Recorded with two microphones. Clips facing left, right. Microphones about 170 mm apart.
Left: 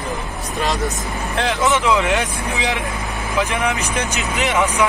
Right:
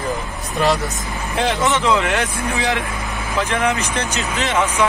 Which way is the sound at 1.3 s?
5° right (ahead or behind).